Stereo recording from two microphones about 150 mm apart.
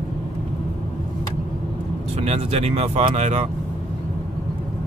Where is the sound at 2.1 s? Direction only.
45° right (ahead or behind).